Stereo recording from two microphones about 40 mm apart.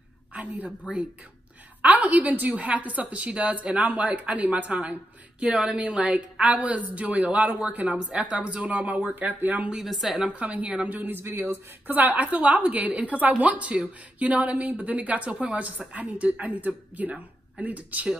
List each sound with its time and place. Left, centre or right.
0.3 s a woman's voice: right
1.8 s a woman's voice: right
5.5 s speech: right
6.4 s a woman's voice: right
9.1 s speech: right
9.8 s a woman's voice: centre
10.4 s a woman's voice: right
11.2 s speech: right
11.9 s a woman's voice: right